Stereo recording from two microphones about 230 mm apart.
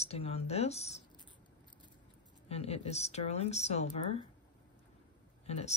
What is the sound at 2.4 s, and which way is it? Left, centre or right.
Speech, left.